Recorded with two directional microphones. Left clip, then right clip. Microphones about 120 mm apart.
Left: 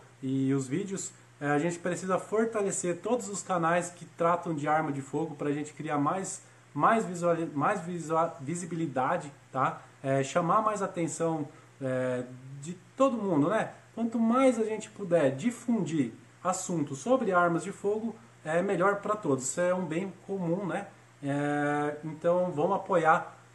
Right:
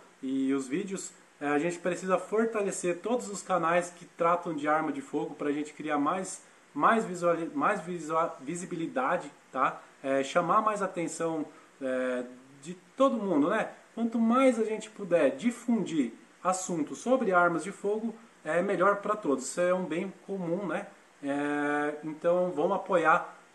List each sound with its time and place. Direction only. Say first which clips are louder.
0.3 s speech: even; 25° left (ahead or behind)